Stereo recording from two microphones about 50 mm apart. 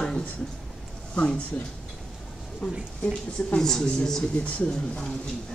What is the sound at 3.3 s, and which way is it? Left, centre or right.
Speech, centre.